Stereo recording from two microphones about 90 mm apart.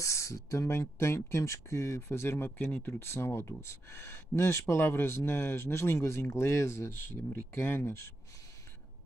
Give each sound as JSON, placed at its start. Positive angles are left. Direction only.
{"t": 0.0, "sound": "speech", "side_deg": 35}